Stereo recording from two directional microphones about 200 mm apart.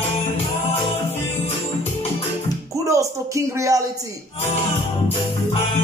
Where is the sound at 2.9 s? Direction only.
15° right (ahead or behind).